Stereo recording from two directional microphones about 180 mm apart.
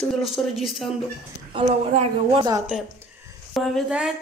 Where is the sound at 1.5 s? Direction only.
30° right (ahead or behind).